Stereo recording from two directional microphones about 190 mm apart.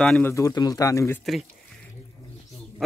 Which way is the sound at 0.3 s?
15° left (ahead or behind).